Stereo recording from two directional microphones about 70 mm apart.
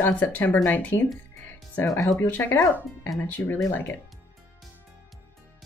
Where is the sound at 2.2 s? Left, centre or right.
Left.